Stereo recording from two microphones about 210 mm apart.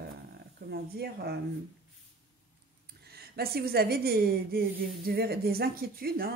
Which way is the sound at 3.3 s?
45° right (ahead or behind).